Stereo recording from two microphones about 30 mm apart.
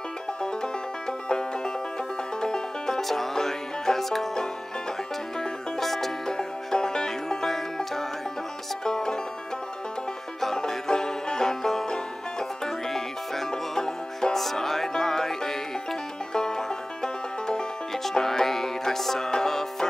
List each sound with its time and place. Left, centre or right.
0.4 s music: left
3.0 s music: centre
5.8 s music: centre
6.2 s music: left
8.8 s music: left
10.5 s banjo: left
11.9 s music: left
12.8 s music: centre
13.5 s music: left
18.2 s music: centre